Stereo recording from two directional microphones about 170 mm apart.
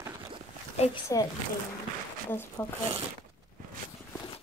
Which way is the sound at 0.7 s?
40° left (ahead or behind).